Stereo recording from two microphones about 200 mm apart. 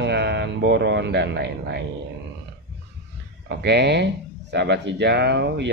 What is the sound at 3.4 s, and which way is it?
A man's voice, 55° right (ahead or behind).